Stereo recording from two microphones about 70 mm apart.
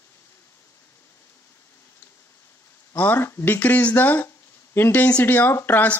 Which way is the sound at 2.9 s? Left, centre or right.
Left.